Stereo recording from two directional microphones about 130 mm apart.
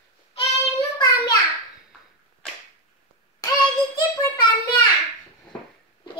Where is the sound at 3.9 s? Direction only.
35° left (ahead or behind).